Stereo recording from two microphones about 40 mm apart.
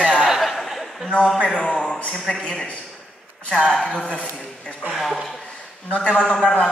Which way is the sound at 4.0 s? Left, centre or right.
Left.